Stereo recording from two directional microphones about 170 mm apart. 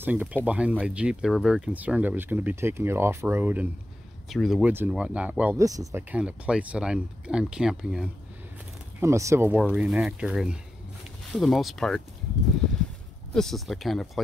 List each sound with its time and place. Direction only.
0.0 s speech: 10° right (ahead or behind)
4.3 s speech: centre (ahead or behind)
9.0 s speech: 15° right (ahead or behind)
9.6 s speech: 5° right (ahead or behind)
13.3 s speech: centre (ahead or behind)